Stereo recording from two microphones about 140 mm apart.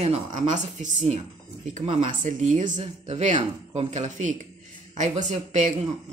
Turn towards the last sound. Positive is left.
turn(degrees=-55)  # may be behind; listen again after turning